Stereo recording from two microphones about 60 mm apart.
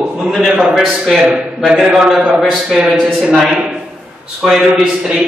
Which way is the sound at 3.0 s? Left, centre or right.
Right.